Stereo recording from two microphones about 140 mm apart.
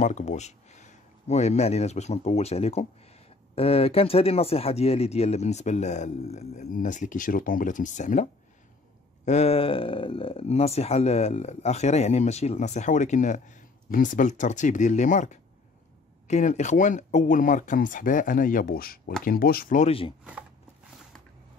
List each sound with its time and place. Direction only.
0.0 s speech: 60° left (ahead or behind)
6.7 s speech: 65° left (ahead or behind)
19.9 s speech: 40° left (ahead or behind)